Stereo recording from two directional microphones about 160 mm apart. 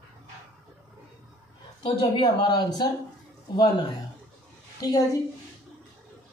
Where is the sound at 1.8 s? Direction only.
30° left (ahead or behind).